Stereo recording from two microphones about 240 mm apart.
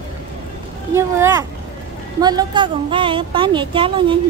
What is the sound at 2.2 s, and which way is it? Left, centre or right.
A woman's voice, centre.